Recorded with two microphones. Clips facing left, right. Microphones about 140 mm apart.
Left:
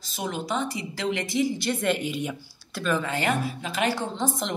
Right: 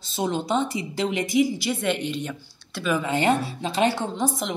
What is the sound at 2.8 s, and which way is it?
Speech, 10° right (ahead or behind).